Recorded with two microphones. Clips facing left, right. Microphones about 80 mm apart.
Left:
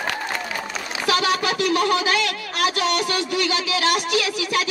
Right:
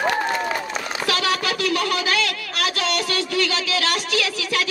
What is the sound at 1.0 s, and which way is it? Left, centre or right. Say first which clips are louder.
Speech: left 3 dB; left.